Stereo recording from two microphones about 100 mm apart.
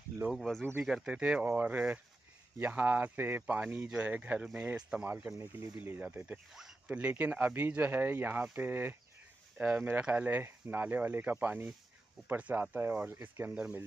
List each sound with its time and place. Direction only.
0.3 s speech: centre (ahead or behind); by 8.9 s 20° right (ahead or behind)
9.6 s speech: 10° right (ahead or behind)
13.6 s speech: 10° right (ahead or behind)